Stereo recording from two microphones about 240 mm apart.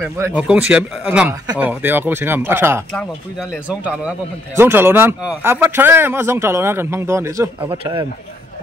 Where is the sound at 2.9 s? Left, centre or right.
Centre.